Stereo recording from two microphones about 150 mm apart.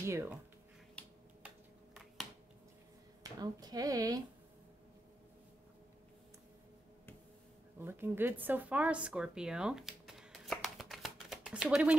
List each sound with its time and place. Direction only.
0.0 s speech: 15° right (ahead or behind)
3.3 s speech: 25° right (ahead or behind)
7.8 s speech: 15° right (ahead or behind)